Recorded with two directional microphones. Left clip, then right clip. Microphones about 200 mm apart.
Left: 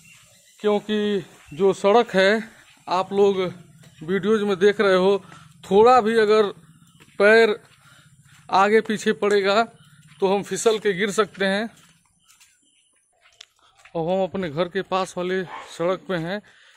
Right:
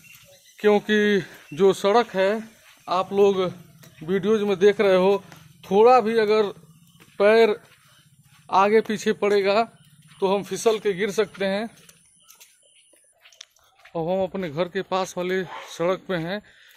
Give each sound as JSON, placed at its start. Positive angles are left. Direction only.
{"t": 0.6, "sound": "speech", "side_deg": -15}
{"t": 2.0, "sound": "speech", "side_deg": 55}
{"t": 2.8, "sound": "a man's voice", "side_deg": 20}
{"t": 5.6, "sound": "a man's voice", "side_deg": 25}
{"t": 13.4, "sound": "a sound", "side_deg": 10}
{"t": 13.9, "sound": "a man's voice", "side_deg": 15}